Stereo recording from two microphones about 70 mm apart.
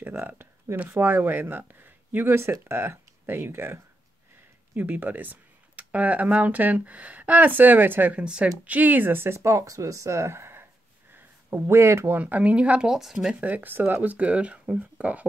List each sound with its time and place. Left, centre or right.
0.0 s speech: right
8.2 s speech: centre; by 12.2 s right
12.2 s speech: right
13.4 s speech: right
14.1 s speech: centre